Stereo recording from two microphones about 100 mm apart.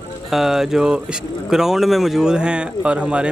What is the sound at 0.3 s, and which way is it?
Speech, 5° right (ahead or behind).